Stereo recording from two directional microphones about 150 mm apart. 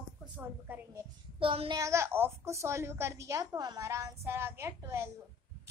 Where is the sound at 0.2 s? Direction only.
10° right (ahead or behind).